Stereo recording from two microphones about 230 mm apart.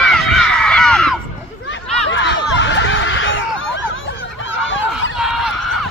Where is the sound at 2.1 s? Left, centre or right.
Left.